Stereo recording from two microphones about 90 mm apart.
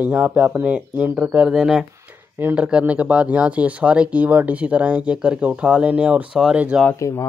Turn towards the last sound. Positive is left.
turn(degrees=35)  # may be behind; listen again after turning